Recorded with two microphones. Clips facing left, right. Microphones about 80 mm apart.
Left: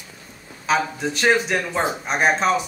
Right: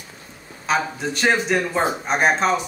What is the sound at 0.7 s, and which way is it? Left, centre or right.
Speech, centre.